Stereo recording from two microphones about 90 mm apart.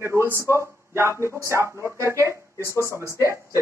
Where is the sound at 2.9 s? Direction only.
35° right (ahead or behind).